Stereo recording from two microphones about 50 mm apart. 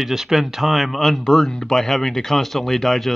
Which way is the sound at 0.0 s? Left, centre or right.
Centre.